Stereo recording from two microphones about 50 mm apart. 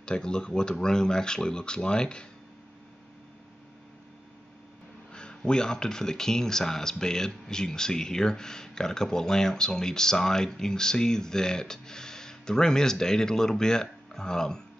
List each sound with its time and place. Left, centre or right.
0.0 s speech: centre
5.1 s speech: centre